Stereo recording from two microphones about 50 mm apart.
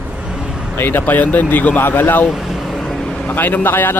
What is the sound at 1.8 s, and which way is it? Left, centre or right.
Speech, left.